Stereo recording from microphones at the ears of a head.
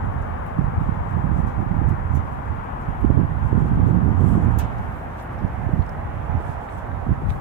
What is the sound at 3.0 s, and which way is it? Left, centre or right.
Vehicle, right.